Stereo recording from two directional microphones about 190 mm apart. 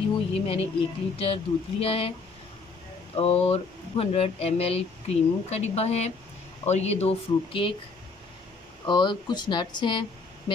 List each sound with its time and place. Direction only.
0.5 s speech: 30° left (ahead or behind)
3.2 s speech: 30° left (ahead or behind)
8.8 s speech: 25° left (ahead or behind)